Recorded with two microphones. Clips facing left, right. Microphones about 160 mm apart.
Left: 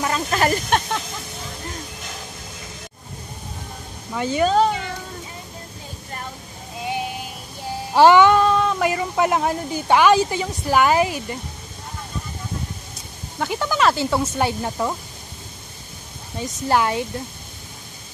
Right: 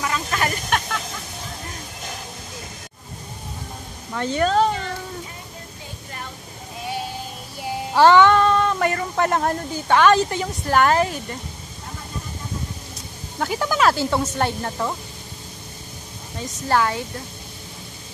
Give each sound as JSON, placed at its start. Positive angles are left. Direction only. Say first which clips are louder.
{"t": 0.0, "sound": "speech", "louder": "left 4 dB", "side_deg": 35}
{"t": 4.1, "sound": "speech", "louder": "left 1 dB", "side_deg": 10}
{"t": 7.9, "sound": "speech", "louder": "left 1 dB", "side_deg": 15}
{"t": 13.4, "sound": "speech", "louder": "even", "side_deg": 0}
{"t": 16.6, "sound": "speech", "louder": "left 1 dB", "side_deg": 20}